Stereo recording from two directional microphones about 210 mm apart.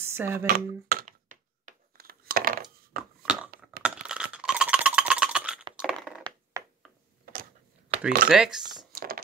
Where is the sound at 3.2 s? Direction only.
5° right (ahead or behind).